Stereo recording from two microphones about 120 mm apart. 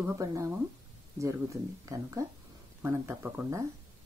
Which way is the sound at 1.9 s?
25° right (ahead or behind).